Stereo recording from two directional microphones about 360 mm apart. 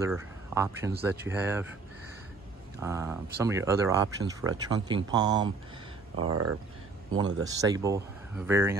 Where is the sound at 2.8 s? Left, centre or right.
Centre.